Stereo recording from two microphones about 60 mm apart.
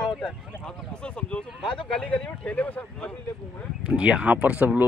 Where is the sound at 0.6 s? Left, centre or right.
Centre.